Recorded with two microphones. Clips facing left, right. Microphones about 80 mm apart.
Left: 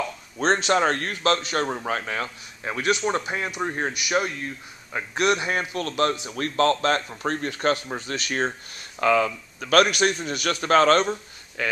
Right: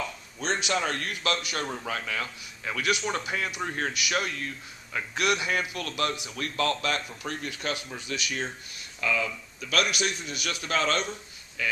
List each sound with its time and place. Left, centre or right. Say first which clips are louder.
0.4 s a man's voice: left 8 dB; left